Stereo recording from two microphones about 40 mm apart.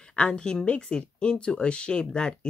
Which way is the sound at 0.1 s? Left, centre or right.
Left.